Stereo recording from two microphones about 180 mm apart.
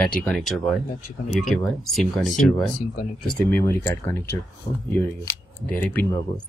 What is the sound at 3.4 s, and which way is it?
Speech, 10° left (ahead or behind).